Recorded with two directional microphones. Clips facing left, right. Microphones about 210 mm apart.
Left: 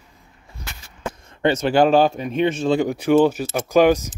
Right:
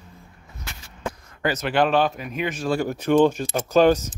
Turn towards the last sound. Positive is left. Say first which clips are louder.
# left 2 dB
turn(degrees=10)  # may be behind; listen again after turning